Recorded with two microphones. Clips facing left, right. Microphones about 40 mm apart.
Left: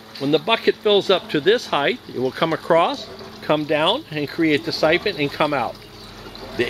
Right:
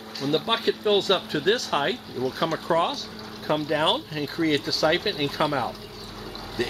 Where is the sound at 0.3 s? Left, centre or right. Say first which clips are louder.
Left 6 dB; left.